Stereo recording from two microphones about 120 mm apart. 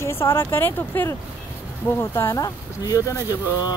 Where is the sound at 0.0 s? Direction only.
20° left (ahead or behind).